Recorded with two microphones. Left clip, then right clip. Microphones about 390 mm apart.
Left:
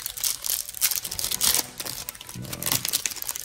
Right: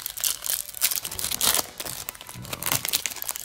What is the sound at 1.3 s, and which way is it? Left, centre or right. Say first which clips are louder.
Tearing: right 1 dB; centre.